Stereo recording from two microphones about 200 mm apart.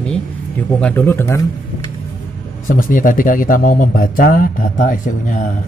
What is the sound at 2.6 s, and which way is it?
Speech, 40° left (ahead or behind).